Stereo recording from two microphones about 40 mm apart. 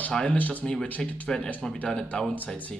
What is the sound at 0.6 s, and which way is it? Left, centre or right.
Speech, left.